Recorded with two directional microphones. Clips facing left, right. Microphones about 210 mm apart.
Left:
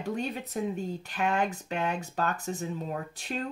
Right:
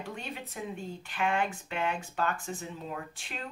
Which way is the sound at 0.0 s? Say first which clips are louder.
Left 7 dB; 40° left (ahead or behind).